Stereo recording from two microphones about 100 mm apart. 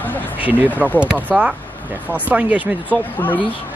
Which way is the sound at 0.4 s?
15° right (ahead or behind).